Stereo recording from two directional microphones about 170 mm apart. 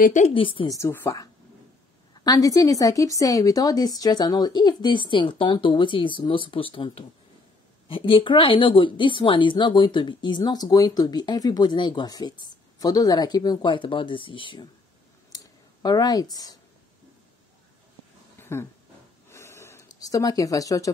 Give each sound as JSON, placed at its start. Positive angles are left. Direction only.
{"t": 0.0, "sound": "a woman's voice", "side_deg": 50}
{"t": 0.3, "sound": "a woman's voice", "side_deg": 30}
{"t": 0.7, "sound": "a woman's voice", "side_deg": 15}
{"t": 15.3, "sound": "clicking", "side_deg": 25}
{"t": 18.4, "sound": "a sound", "side_deg": 15}